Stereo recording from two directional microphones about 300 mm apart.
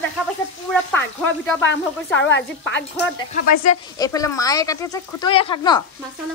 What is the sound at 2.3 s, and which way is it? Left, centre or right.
Speech, left.